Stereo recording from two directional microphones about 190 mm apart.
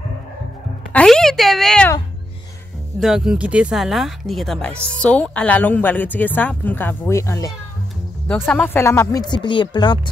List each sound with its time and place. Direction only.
0.9 s speech: 5° left (ahead or behind)
3.0 s speech: centre (ahead or behind); by 9.9 s 25° left (ahead or behind)